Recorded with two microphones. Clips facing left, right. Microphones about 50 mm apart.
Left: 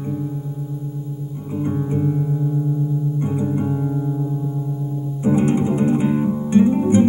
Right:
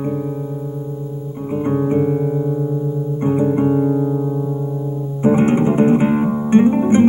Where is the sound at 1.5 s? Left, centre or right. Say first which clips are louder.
Right 6 dB; right.